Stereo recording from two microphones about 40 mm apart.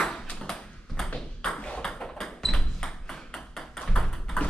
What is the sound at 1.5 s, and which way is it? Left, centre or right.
Ping, left.